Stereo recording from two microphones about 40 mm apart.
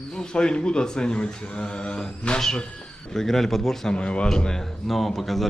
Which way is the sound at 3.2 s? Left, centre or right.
Centre.